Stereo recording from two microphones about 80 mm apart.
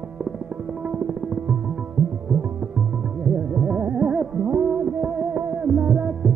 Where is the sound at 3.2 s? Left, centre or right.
Centre.